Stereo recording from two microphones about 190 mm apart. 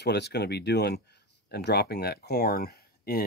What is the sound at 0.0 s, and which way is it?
Speech, 60° left (ahead or behind).